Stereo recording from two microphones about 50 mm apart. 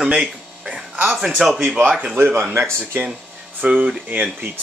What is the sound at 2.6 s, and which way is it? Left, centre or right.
Speech, right.